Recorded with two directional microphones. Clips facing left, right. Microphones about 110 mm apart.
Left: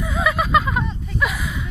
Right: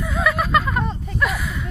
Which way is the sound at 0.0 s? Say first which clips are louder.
Even; 5° left (ahead or behind).